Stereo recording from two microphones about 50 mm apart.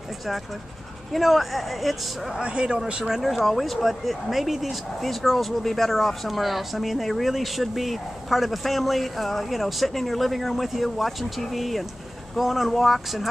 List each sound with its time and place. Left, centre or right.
1.1 s speech: centre
2.4 s speech: centre
3.2 s speech: centre